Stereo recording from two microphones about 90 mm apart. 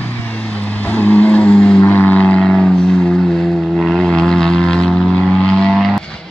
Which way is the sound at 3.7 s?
5° left (ahead or behind).